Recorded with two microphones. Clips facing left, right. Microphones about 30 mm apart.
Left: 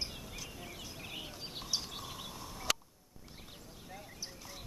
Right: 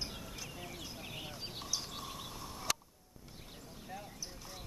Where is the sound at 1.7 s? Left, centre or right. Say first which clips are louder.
Left 3 dB; left.